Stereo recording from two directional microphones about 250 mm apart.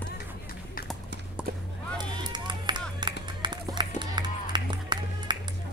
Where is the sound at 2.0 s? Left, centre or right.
Centre.